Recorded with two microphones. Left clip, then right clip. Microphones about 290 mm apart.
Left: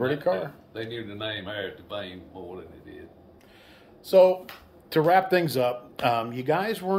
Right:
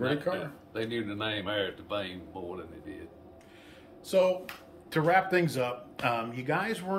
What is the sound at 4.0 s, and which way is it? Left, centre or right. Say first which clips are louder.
Speech: left 8 dB; centre.